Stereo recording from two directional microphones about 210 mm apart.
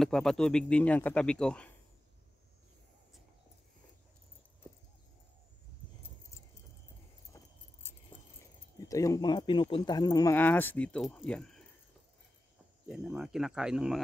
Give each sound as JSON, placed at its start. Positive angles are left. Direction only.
{"t": 0.0, "sound": "speech", "side_deg": 0}
{"t": 7.3, "sound": "keys jangling", "side_deg": 15}
{"t": 8.7, "sound": "speech", "side_deg": 15}
{"t": 12.8, "sound": "speech", "side_deg": 0}